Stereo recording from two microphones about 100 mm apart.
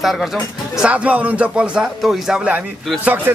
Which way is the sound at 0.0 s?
Centre (ahead or behind).